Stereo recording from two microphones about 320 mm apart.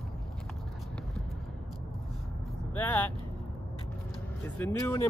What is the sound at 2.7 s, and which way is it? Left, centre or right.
Speech, centre.